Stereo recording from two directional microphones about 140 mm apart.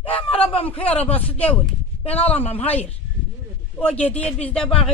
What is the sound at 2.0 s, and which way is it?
Speech, 45° left (ahead or behind).